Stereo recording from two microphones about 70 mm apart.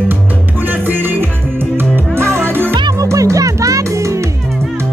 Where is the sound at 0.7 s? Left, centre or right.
Right.